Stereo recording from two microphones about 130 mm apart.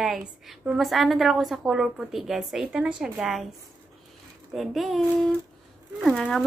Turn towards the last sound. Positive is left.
turn(degrees=0)  # may be behind; listen again after turning